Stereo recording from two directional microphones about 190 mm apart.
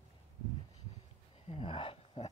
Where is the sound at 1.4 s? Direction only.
25° left (ahead or behind).